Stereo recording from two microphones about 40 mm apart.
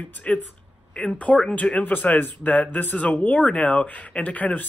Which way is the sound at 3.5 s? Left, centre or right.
Left.